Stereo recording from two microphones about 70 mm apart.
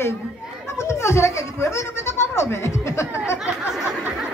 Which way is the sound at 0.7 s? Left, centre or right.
Left.